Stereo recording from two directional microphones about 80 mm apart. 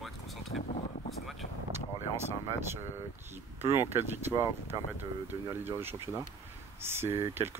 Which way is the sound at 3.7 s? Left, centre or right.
Right.